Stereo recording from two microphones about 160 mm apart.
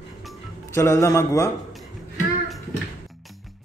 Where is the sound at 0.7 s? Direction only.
15° left (ahead or behind).